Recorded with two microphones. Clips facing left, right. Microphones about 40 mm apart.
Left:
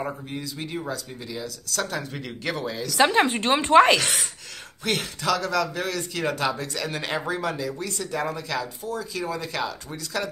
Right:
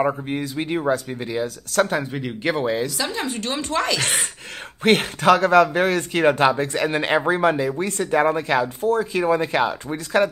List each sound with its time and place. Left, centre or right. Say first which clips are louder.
0.0 s speech: right 9 dB; right
2.0 s speech: right 6 dB; right
3.0 s speech: left 6 dB; left
3.3 s speech: left 9 dB; left
4.0 s speech: right 3 dB; right
4.8 s speech: right 9 dB; right